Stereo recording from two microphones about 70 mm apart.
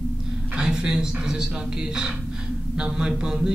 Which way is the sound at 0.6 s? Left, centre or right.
Centre.